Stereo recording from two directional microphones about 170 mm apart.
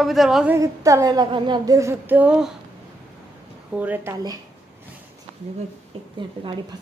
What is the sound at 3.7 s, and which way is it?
Speech, 10° right (ahead or behind).